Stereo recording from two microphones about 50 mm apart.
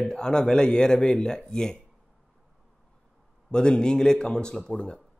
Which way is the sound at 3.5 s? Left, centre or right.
Centre.